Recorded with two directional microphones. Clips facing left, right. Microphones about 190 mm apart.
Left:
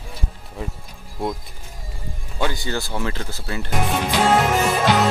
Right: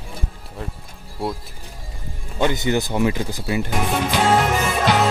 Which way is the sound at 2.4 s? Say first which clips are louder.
Right 5 dB; 20° right (ahead or behind).